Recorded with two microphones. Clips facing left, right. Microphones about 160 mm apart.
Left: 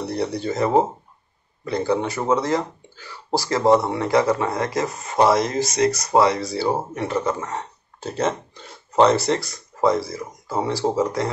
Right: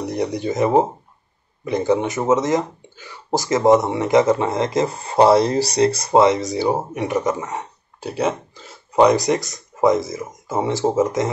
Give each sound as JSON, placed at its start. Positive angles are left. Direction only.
{"t": 0.0, "sound": "speech", "side_deg": -15}
{"t": 9.0, "sound": "speech", "side_deg": -15}